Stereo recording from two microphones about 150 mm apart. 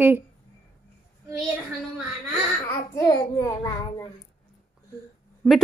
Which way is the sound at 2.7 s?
25° left (ahead or behind).